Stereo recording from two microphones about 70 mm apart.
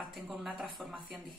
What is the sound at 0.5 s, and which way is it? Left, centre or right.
Speech, centre.